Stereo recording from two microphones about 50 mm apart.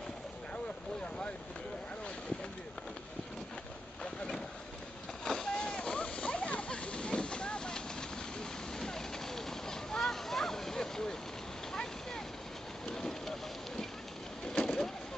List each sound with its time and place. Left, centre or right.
1.0 s vehicle: left
5.2 s splash: centre
8.4 s a sound: centre
14.5 s vehicle: centre